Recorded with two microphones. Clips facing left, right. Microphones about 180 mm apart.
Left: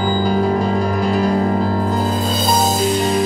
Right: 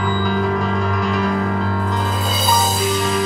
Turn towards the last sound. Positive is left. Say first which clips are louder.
# left 3 dB
turn(degrees=30)  # may be behind; listen again after turning